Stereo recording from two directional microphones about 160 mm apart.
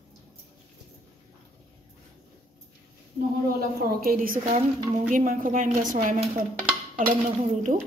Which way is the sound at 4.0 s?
60° right (ahead or behind).